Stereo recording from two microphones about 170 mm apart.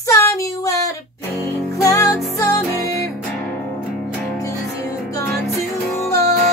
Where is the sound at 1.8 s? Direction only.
20° left (ahead or behind).